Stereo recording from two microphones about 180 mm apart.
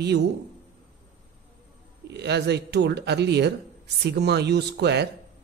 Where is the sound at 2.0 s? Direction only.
65° right (ahead or behind).